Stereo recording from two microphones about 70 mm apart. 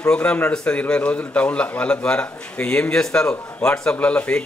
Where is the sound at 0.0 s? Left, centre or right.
Centre.